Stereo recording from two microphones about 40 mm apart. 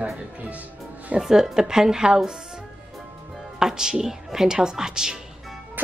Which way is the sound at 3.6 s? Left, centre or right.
Centre.